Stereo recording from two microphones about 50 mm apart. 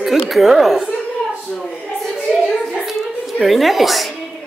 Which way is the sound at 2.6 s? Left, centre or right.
Centre.